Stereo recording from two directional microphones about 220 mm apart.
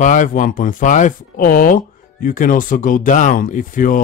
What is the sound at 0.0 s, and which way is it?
Speech, 35° left (ahead or behind).